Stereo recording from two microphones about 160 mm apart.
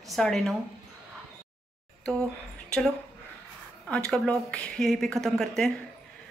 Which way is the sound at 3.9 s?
5° left (ahead or behind).